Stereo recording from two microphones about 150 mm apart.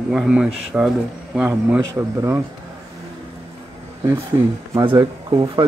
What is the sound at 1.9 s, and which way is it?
Speech, 20° right (ahead or behind).